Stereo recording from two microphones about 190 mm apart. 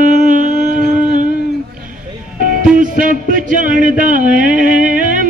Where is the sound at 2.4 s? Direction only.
45° right (ahead or behind).